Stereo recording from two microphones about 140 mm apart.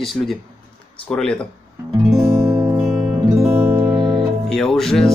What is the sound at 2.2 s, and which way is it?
Music, 20° right (ahead or behind).